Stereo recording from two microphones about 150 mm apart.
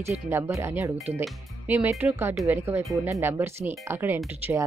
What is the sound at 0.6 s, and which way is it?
Speech, 20° right (ahead or behind).